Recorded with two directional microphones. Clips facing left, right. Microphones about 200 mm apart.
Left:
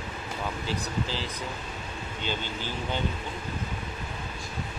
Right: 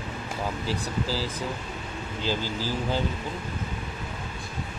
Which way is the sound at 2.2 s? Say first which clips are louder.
Right 5 dB; 35° right (ahead or behind).